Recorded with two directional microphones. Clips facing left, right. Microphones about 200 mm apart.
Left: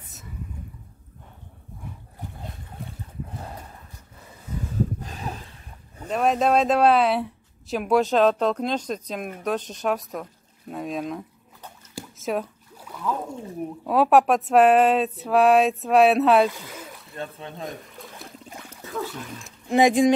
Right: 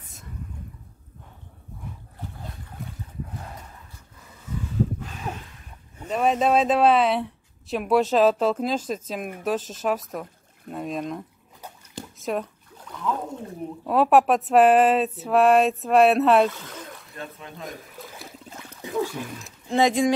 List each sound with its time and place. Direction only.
5.0 s a sound: 35° left (ahead or behind)
6.0 s speech: centre (ahead or behind)
11.9 s a sound: centre (ahead or behind)
13.8 s speech: centre (ahead or behind)
17.2 s speech: 30° left (ahead or behind)
17.6 s a sound: centre (ahead or behind)
18.8 s trickle: 15° right (ahead or behind)
19.2 s speech: centre (ahead or behind)
19.7 s speech: 15° left (ahead or behind)